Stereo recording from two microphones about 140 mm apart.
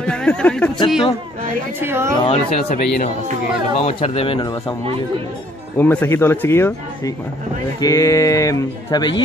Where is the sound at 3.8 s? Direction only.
50° left (ahead or behind).